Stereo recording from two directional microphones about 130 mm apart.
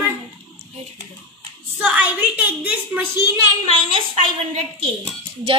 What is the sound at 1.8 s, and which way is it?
A woman's voice, 10° right (ahead or behind).